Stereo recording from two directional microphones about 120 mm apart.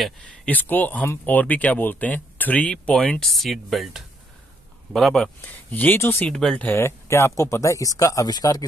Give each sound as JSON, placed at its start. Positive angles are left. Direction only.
{"t": 0.0, "sound": "speech", "side_deg": 10}